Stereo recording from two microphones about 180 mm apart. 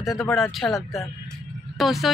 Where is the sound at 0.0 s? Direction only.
Centre (ahead or behind).